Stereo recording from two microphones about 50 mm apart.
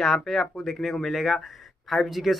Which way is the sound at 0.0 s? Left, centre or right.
Centre.